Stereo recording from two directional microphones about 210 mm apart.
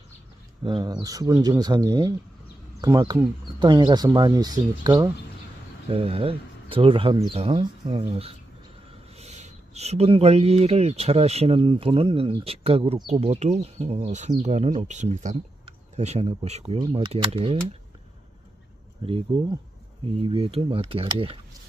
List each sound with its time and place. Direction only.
0.7 s speech: 20° right (ahead or behind)
19.0 s speech: 25° right (ahead or behind)